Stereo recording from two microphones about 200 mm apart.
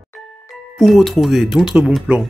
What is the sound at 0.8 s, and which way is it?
Speech, centre (ahead or behind).